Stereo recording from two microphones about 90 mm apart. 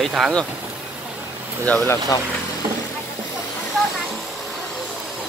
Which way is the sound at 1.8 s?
30° left (ahead or behind).